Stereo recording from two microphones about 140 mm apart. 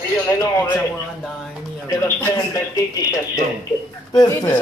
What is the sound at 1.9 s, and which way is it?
Speech, 25° left (ahead or behind).